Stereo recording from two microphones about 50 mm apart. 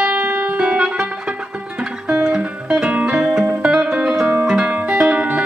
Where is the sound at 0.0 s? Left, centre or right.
Right.